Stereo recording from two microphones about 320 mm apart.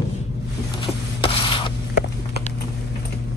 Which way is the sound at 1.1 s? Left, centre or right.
Centre.